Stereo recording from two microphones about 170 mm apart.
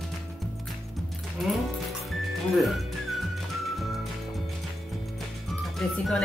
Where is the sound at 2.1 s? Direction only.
Centre (ahead or behind).